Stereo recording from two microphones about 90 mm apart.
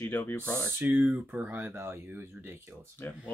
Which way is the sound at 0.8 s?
20° right (ahead or behind).